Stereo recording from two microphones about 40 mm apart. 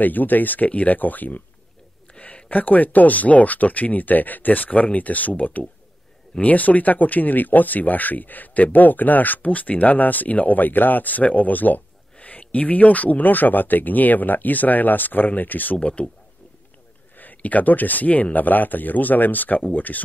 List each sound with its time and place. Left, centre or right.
0.0 s speech: left
2.1 s a sound: left
2.5 s speech: left
15.8 s speech: left
17.2 s speech: left